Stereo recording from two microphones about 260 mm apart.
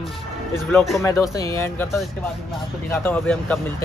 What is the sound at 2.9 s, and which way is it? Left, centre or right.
Speech, centre.